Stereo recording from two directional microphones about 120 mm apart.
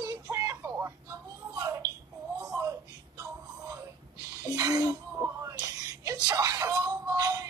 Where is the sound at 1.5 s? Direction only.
30° right (ahead or behind).